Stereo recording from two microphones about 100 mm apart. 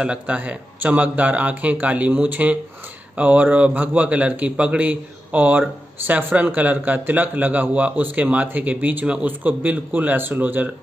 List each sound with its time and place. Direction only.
0.0 s a man's voice: 10° right (ahead or behind)